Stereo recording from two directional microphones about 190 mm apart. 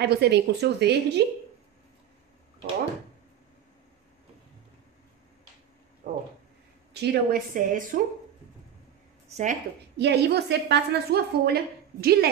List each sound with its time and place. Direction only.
0.0 s a woman's voice: 60° right (ahead or behind)
6.0 s a sound: 40° right (ahead or behind)
6.9 s a woman's voice: 55° right (ahead or behind)
9.3 s a woman's voice: 40° right (ahead or behind)
9.9 s a woman's voice: 60° right (ahead or behind)